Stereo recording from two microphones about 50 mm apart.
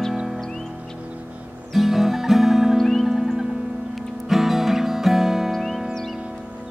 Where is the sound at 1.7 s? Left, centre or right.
Centre.